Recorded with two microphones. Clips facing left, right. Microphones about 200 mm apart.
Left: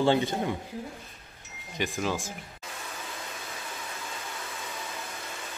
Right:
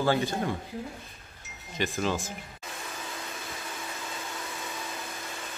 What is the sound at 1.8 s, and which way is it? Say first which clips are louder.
Speech: right 1 dB; 10° left (ahead or behind).